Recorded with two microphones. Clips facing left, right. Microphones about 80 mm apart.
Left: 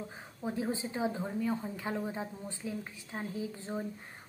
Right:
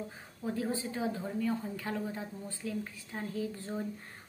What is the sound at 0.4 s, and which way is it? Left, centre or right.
A woman's voice, centre.